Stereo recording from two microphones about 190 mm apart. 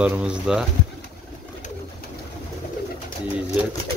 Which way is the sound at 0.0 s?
5° right (ahead or behind).